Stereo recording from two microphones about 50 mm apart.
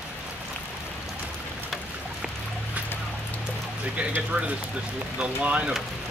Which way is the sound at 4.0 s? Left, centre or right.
Right.